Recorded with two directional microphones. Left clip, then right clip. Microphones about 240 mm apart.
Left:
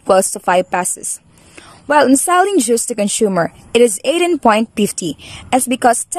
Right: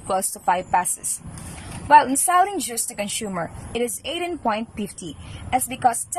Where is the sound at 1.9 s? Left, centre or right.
Left.